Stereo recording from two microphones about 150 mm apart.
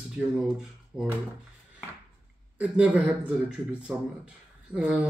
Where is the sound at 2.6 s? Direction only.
10° right (ahead or behind).